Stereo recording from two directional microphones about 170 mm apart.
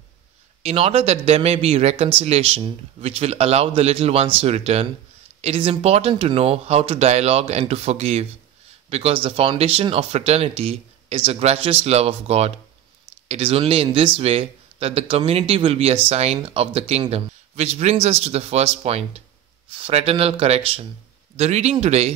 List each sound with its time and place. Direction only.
0.6 s speech: 35° right (ahead or behind)